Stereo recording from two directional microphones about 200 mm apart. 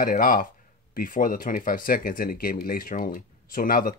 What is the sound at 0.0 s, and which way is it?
Speech, 45° left (ahead or behind).